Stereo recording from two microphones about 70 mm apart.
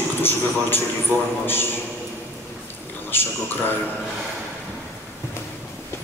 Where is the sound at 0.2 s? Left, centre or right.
Left.